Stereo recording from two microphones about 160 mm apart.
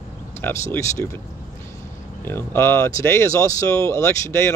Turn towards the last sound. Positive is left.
turn(degrees=15)  # may be behind; listen again after turning